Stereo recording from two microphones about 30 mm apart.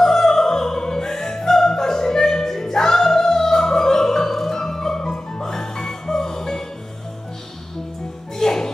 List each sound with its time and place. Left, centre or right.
0.0 s opera: centre
8.4 s music: centre